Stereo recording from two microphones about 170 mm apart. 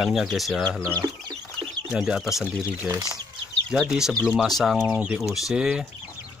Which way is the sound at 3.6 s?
Centre (ahead or behind).